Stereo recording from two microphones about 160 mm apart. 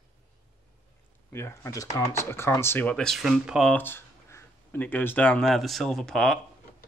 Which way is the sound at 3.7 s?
15° left (ahead or behind).